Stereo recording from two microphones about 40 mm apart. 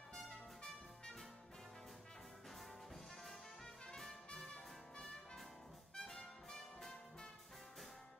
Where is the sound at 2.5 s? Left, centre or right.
Centre.